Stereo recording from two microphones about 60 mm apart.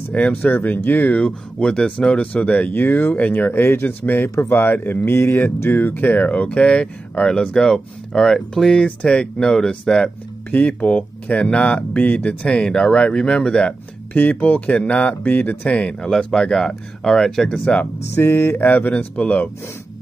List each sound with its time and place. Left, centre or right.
0.3 s speech: left
1.2 s speech: centre
2.7 s speech: left
3.5 s speech: left; by 10.1 s centre
10.5 s speech: left
14.1 s speech: left; by 17.7 s centre
18.1 s speech: left